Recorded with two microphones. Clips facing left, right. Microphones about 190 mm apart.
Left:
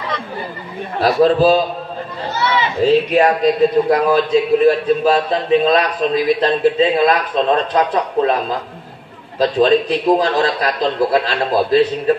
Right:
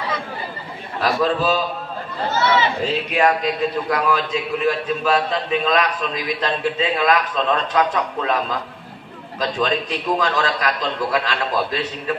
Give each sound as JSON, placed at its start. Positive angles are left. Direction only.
{"t": 1.0, "sound": "a man's voice", "side_deg": 35}
{"t": 3.1, "sound": "a man's voice", "side_deg": 35}